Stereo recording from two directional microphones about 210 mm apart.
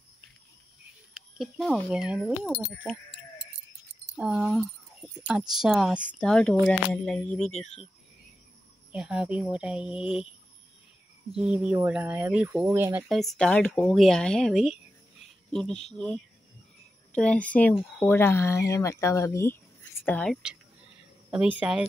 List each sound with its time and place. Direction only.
1.1 s speech: centre (ahead or behind)
4.2 s speech: centre (ahead or behind)
7.6 s speech: 30° left (ahead or behind)
8.9 s speech: 5° right (ahead or behind)
11.3 s speech: 5° right (ahead or behind)